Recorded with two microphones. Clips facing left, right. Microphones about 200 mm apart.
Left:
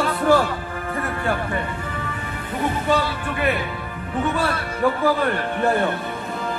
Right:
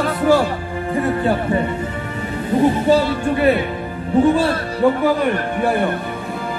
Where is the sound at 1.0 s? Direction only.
20° right (ahead or behind).